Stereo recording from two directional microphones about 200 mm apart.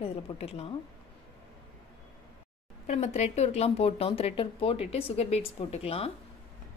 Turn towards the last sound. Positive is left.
turn(degrees=30)  # may be behind; listen again after turning